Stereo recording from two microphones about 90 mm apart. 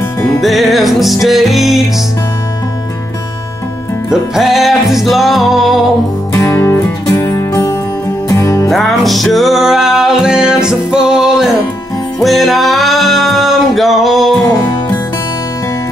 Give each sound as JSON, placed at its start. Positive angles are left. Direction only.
{"t": 0.4, "sound": "music", "side_deg": 0}
{"t": 4.1, "sound": "music", "side_deg": -5}
{"t": 6.3, "sound": "music", "side_deg": 30}
{"t": 8.6, "sound": "music", "side_deg": 0}